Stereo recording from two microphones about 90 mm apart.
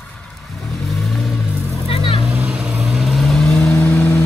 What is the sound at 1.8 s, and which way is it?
Vehicle, 90° left.